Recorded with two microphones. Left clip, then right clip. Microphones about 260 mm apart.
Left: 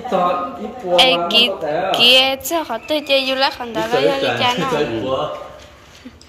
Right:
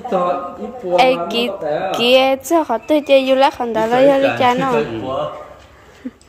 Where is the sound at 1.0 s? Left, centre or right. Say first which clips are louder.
Left 2 dB; right.